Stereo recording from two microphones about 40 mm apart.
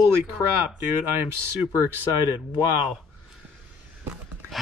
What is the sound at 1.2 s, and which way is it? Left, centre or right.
Speech, right.